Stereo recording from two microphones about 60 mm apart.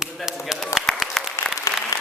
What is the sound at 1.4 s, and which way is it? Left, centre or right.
Applause, left.